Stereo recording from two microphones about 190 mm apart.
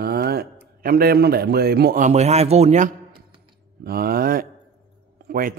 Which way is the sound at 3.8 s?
55° right (ahead or behind).